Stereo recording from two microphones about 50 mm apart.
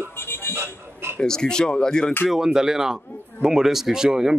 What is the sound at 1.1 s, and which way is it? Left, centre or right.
Speech, centre.